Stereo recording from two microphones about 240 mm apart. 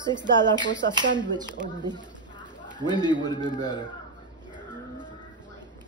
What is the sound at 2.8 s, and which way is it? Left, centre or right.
Speech, centre.